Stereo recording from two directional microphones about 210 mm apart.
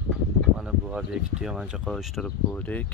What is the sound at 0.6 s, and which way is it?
Speech, 5° right (ahead or behind).